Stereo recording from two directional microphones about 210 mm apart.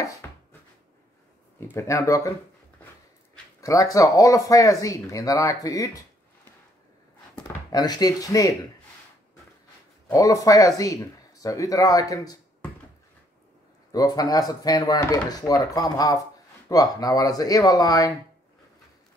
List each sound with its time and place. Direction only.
0.0 s a sound: 15° left (ahead or behind)
1.6 s speech: 10° left (ahead or behind)
3.6 s speech: 15° left (ahead or behind)
7.3 s speech: 20° left (ahead or behind)
10.0 s speech: 15° left (ahead or behind)
13.9 s speech: 20° left (ahead or behind)